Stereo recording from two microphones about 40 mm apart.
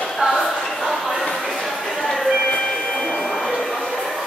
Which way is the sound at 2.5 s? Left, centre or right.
Left.